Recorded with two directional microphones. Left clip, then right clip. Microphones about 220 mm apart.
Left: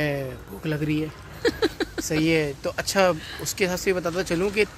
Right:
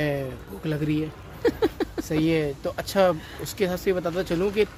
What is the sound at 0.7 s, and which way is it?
Speech, 5° left (ahead or behind).